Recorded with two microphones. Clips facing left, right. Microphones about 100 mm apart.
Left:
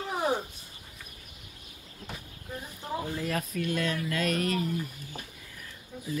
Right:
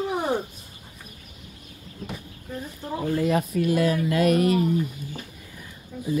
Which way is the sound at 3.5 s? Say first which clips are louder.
Right 7 dB; 20° right (ahead or behind).